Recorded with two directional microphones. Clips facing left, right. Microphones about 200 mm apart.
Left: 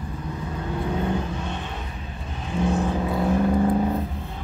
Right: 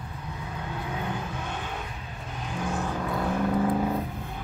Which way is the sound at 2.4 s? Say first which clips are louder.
Left 8 dB; centre (ahead or behind).